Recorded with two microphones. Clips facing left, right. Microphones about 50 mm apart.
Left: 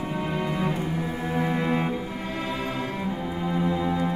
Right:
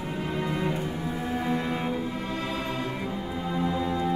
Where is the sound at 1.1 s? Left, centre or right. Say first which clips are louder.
Even; left.